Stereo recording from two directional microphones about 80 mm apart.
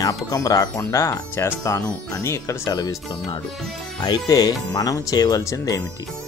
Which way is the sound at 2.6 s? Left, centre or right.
Left.